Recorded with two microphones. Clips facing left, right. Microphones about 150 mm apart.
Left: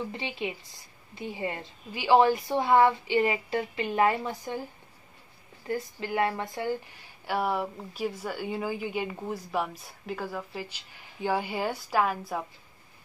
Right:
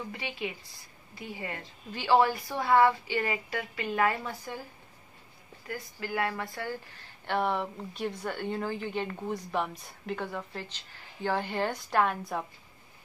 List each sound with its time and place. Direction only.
0.1 s speech: 25° left (ahead or behind)
1.9 s speech: 15° left (ahead or behind)
5.7 s speech: 20° left (ahead or behind); by 12.4 s 5° left (ahead or behind)